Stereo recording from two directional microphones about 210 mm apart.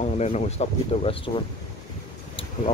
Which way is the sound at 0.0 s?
30° left (ahead or behind).